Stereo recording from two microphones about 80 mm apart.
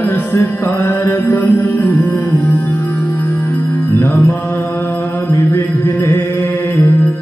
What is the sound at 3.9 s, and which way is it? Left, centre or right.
Mantra, left.